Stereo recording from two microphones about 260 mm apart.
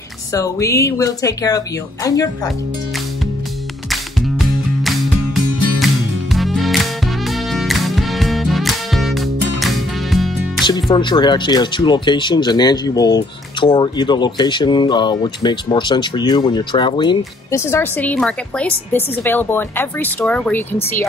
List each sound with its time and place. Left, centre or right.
0.3 s speech: centre
3.9 s music: centre
10.6 s speech: centre